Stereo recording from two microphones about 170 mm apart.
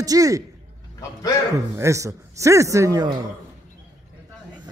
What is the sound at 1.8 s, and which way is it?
A man's voice, 20° right (ahead or behind).